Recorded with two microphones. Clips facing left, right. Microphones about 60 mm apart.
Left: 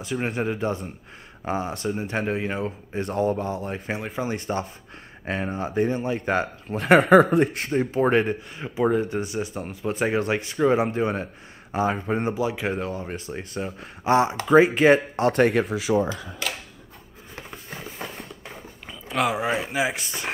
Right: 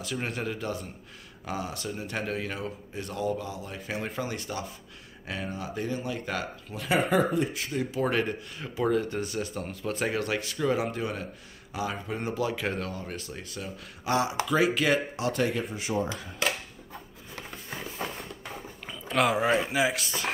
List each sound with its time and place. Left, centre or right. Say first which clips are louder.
0.0 s speech: left 6 dB; left
6.8 s speech: left 10 dB; left
8.1 s speech: left 7 dB; left
12.4 s speech: left 4 dB; centre; by 15.2 s left
15.2 s speech: left 11 dB; left
18.9 s dog: left 1 dB; centre
19.3 s speech: even; centre